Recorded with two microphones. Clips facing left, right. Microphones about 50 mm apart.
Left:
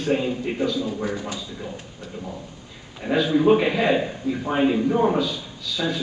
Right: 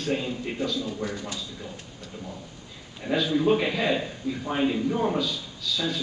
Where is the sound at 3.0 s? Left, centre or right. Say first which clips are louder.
Left 4 dB; centre.